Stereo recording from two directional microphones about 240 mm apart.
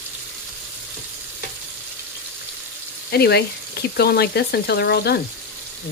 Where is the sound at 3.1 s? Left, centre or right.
Left.